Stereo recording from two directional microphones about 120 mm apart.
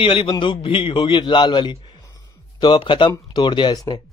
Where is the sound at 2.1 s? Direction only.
35° left (ahead or behind).